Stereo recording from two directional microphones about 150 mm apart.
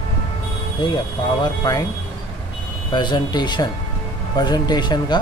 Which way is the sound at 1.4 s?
25° left (ahead or behind).